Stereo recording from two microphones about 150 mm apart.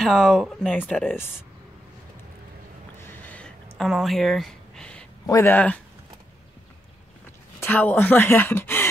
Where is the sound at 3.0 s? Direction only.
10° left (ahead or behind).